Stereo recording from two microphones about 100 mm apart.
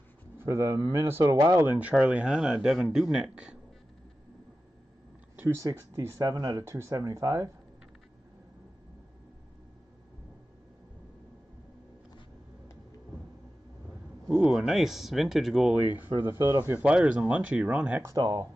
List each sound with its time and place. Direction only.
0.4 s speech: 30° right (ahead or behind); by 3.5 s 10° right (ahead or behind)
5.3 s a sound: 20° right (ahead or behind)
5.6 s speech: 30° right (ahead or behind)
14.5 s speech: 5° right (ahead or behind)
16.0 s speech: 25° right (ahead or behind)
16.6 s speech: 15° right (ahead or behind)
18.1 s speech: 40° right (ahead or behind)